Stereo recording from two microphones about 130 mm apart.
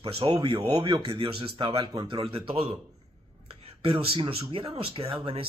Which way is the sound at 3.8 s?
45° right (ahead or behind).